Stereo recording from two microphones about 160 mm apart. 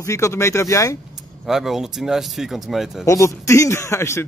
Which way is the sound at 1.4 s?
Centre (ahead or behind).